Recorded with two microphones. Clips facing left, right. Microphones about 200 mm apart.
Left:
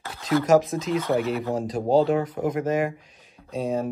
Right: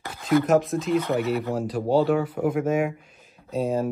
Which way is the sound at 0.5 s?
Centre (ahead or behind).